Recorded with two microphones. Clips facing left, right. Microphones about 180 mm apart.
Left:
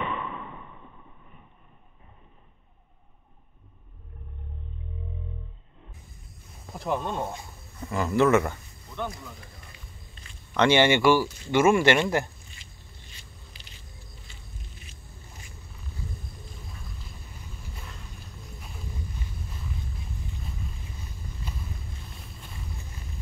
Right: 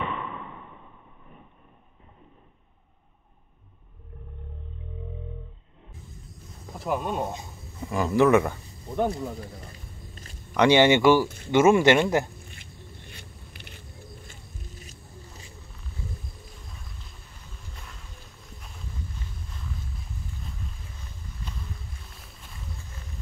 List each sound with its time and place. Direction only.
6.7 s speech: 5° right (ahead or behind)
8.8 s a sound: 35° right (ahead or behind)
10.5 s speech: 15° right (ahead or behind)
11.2 s speech: 55° right (ahead or behind)
11.5 s speech: 20° right (ahead or behind)
12.4 s a sound: 55° right (ahead or behind); by 15.5 s 35° right (ahead or behind)
21.5 s vehicle: 10° left (ahead or behind)